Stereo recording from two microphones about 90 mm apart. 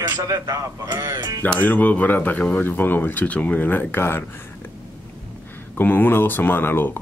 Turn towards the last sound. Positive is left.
turn(degrees=25)  # may be behind; listen again after turning